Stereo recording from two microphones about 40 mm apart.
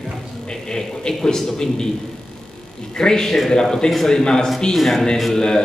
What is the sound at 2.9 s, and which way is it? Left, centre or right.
A man's voice, centre.